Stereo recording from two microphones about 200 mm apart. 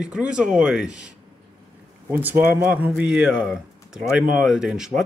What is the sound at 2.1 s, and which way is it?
Speech, 10° right (ahead or behind).